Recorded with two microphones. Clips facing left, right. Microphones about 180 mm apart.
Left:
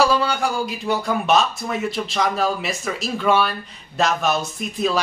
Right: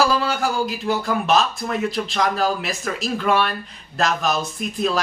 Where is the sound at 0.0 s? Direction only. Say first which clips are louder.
Left 1 dB; centre (ahead or behind).